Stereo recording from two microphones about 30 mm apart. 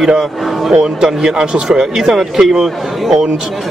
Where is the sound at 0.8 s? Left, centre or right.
Right.